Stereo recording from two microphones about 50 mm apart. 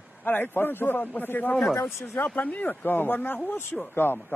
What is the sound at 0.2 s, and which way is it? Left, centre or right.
A man's voice, left.